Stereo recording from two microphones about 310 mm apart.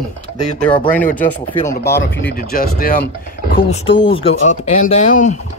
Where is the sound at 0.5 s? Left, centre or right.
Centre.